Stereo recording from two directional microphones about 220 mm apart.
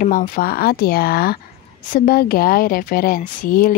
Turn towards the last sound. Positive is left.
turn(degrees=40)  # may be behind; listen again after turning